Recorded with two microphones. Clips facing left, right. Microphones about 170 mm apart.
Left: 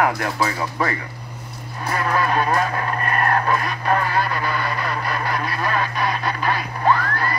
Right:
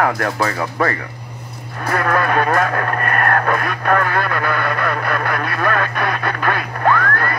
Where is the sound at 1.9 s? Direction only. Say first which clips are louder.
Right 3 dB; 60° right (ahead or behind).